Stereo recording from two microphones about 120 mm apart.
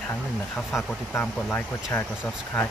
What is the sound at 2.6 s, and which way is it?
Speech, 10° left (ahead or behind).